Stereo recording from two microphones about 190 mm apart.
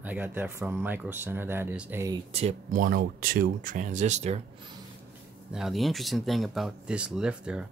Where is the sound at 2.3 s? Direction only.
40° right (ahead or behind).